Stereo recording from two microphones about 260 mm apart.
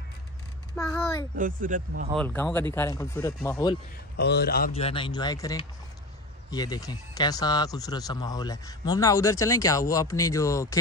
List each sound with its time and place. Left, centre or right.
0.7 s a sound: centre
1.3 s speech: right
2.1 s speech: centre
4.2 s a man's voice: left
4.7 s speech: left